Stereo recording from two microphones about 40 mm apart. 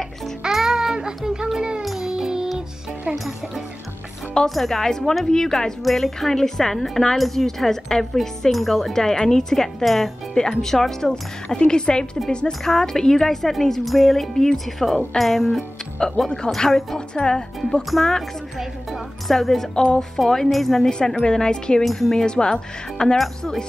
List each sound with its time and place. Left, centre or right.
0.5 s baby cry: centre
1.8 s music: centre
4.6 s speech: centre
9.8 s music: centre
10.5 s speech: centre
11.5 s a woman's voice: left
15.1 s music: centre
16.0 s a woman's voice: centre
17.9 s speech: centre
19.2 s speech: centre
21.8 s music: centre
22.1 s speech: centre
23.1 s music: centre